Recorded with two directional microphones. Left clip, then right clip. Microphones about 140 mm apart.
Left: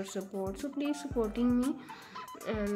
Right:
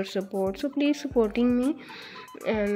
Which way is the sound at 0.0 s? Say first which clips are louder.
Right 9 dB; 30° right (ahead or behind).